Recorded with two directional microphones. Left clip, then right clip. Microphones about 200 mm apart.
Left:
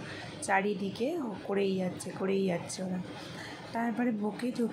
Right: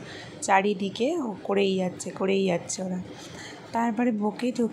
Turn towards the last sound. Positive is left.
turn(degrees=-20)  # may be behind; listen again after turning